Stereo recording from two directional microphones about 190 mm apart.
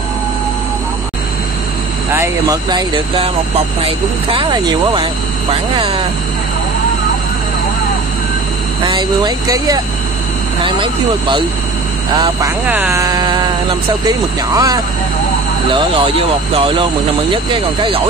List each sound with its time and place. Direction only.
2.1 s speech: 15° right (ahead or behind)
8.8 s speech: 25° right (ahead or behind)
12.6 s speech: 10° right (ahead or behind); by 16.8 s 30° right (ahead or behind)